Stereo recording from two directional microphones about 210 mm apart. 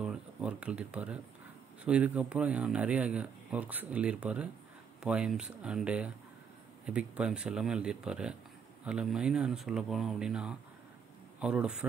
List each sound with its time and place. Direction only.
0.0 s speech: 5° right (ahead or behind)